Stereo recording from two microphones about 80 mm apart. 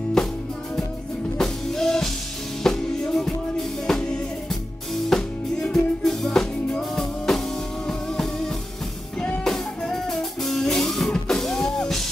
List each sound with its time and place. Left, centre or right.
1.4 s music: centre
2.6 s drum: centre
5.1 s music: centre